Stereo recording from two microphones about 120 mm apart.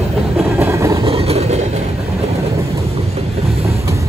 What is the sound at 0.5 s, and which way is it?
Vehicle, 20° right (ahead or behind).